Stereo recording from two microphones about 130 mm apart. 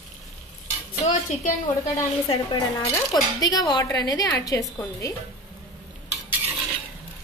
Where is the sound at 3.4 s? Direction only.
30° left (ahead or behind).